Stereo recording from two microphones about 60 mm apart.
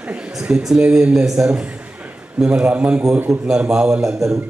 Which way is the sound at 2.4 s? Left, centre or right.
Centre.